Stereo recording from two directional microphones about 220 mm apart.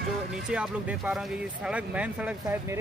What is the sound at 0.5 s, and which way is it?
Speech, 5° right (ahead or behind).